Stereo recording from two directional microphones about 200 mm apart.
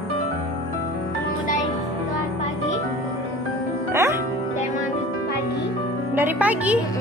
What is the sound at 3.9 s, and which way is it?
Music, 15° right (ahead or behind).